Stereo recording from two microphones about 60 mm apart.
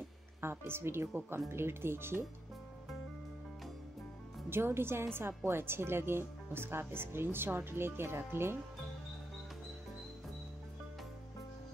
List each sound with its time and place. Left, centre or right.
0.4 s speech: right
4.5 s a woman's voice: right